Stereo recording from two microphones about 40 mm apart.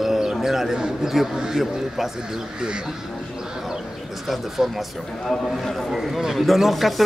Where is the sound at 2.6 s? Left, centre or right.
Right.